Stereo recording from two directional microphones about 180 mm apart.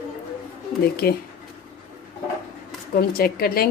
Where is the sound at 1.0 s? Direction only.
60° left (ahead or behind).